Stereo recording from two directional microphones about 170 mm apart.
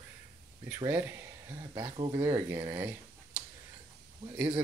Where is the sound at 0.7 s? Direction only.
15° right (ahead or behind).